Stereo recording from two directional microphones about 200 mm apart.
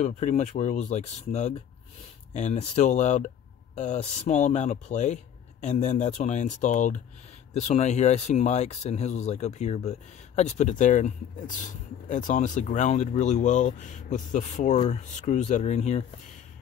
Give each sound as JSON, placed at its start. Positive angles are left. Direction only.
{"t": 0.0, "sound": "speech", "side_deg": 35}